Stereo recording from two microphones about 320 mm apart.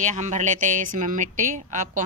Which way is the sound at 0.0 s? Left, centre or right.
Right.